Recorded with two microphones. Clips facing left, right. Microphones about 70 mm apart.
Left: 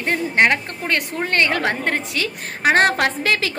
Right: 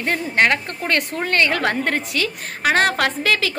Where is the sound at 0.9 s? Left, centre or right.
Centre.